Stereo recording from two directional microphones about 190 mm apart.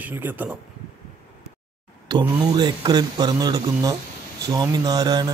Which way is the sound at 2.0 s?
20° right (ahead or behind).